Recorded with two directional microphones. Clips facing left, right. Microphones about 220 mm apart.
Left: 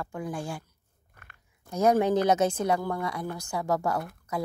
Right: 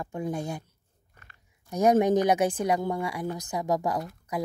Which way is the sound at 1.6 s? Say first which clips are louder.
Right 2 dB; 15° right (ahead or behind).